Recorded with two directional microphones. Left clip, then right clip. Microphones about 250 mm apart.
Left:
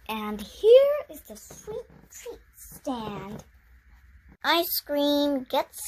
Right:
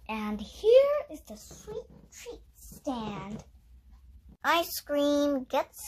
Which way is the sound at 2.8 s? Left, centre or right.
Left.